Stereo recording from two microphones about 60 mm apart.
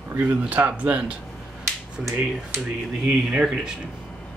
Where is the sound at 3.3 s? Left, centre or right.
Centre.